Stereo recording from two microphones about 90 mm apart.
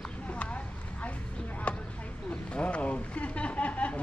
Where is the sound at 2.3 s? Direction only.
15° left (ahead or behind).